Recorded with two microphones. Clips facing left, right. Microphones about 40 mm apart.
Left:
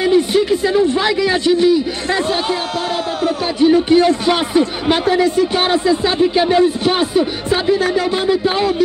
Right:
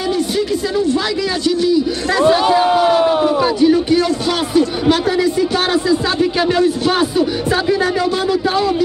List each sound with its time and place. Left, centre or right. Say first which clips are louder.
0.0 s speech: left 4 dB; left
2.6 s a sound: right 8 dB; right
3.6 s speech: left 4 dB; left